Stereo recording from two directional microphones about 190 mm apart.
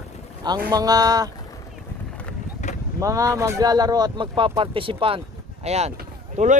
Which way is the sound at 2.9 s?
15° right (ahead or behind).